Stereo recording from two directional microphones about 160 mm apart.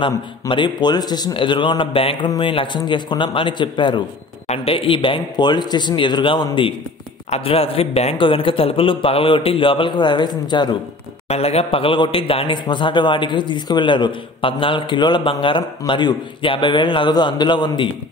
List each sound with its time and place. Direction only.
0.0 s a man's voice: 30° left (ahead or behind)
11.2 s a man's voice: 40° left (ahead or behind)